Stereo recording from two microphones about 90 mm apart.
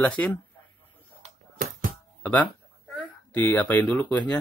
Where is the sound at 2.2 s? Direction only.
15° left (ahead or behind).